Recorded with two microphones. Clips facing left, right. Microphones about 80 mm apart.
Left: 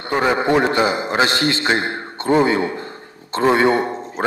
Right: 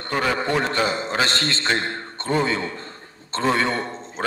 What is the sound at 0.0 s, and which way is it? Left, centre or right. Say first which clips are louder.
A man's voice: left 5 dB; centre.